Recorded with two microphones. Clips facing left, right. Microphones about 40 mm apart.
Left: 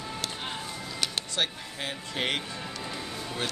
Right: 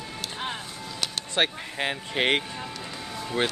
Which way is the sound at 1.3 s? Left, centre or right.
Right.